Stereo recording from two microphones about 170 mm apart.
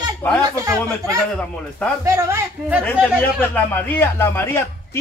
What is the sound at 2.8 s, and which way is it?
A man's voice, 10° left (ahead or behind).